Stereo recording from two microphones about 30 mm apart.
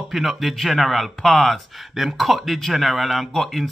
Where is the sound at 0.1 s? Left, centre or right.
Centre.